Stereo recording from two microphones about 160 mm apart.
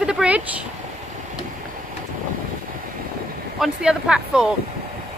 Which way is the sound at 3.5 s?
5° right (ahead or behind).